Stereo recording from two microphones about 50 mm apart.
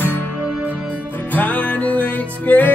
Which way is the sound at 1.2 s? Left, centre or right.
Left.